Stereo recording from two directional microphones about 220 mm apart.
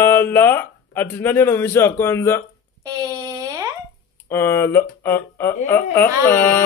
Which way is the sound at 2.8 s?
15° right (ahead or behind).